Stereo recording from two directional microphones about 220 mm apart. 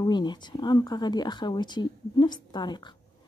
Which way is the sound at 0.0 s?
20° left (ahead or behind).